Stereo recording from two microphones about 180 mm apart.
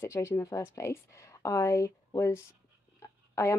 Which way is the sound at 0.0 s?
15° left (ahead or behind).